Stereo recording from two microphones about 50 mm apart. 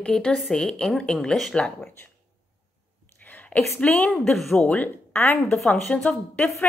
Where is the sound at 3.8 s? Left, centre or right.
Left.